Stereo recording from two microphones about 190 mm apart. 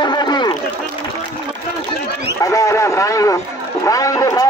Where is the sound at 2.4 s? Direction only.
15° left (ahead or behind).